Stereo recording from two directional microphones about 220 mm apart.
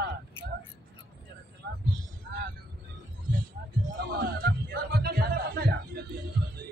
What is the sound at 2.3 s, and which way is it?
Vehicle, 45° right (ahead or behind).